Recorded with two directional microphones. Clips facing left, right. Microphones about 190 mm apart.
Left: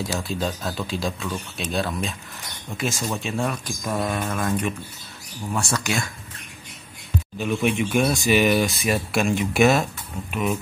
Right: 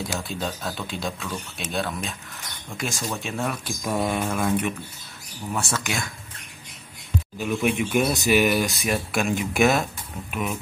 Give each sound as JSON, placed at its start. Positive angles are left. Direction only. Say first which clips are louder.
{"t": 0.0, "sound": "speech", "louder": "left 3 dB", "side_deg": 0}
{"t": 2.9, "sound": "speech", "louder": "left 2 dB", "side_deg": 20}
{"t": 3.2, "sound": "speech", "louder": "left 2 dB", "side_deg": 0}
{"t": 7.3, "sound": "speech", "louder": "left 1 dB", "side_deg": -5}